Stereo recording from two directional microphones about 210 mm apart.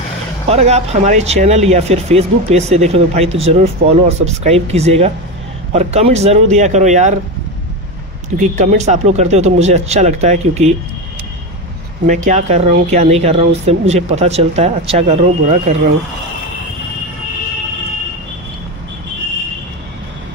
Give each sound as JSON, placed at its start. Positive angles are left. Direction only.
{"t": 0.5, "sound": "speech", "side_deg": -30}
{"t": 8.4, "sound": "speech", "side_deg": -35}
{"t": 12.3, "sound": "speech", "side_deg": -35}